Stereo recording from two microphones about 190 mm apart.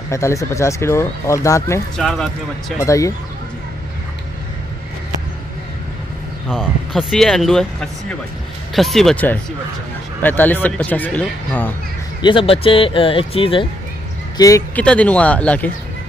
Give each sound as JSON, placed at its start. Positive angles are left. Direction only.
{"t": 0.1, "sound": "speech", "side_deg": 15}
{"t": 2.0, "sound": "speech", "side_deg": 5}
{"t": 2.8, "sound": "speech", "side_deg": 15}
{"t": 6.5, "sound": "speech", "side_deg": 0}
{"t": 12.2, "sound": "speech", "side_deg": 25}
{"t": 14.8, "sound": "speech", "side_deg": 5}